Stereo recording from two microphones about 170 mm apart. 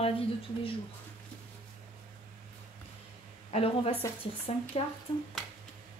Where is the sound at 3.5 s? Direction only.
35° left (ahead or behind).